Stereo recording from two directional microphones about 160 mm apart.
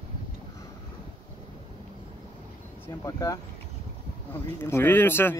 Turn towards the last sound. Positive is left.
turn(degrees=15)  # may be behind; listen again after turning